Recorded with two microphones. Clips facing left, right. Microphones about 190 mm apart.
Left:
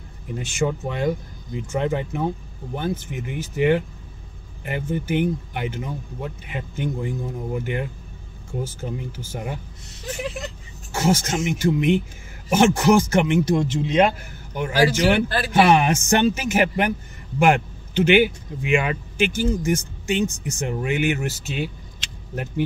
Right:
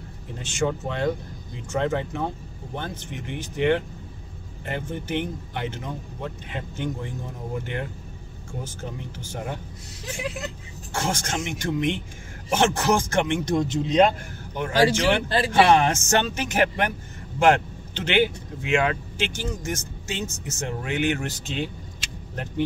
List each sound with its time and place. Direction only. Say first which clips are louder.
0.4 s speech: left 2 dB; 10° left (ahead or behind)
8.6 s speech: left 4 dB; 5° left (ahead or behind)
15.2 s a man's voice: right 1 dB; 25° right (ahead or behind)
15.7 s speech: left 1 dB; 10° left (ahead or behind)